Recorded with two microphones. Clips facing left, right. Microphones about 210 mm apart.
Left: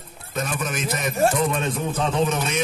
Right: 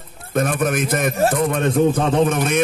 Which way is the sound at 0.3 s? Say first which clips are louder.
Right 8 dB; 55° right (ahead or behind).